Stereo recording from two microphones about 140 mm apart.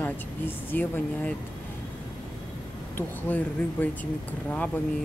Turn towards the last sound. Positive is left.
turn(degrees=10)  # may be behind; listen again after turning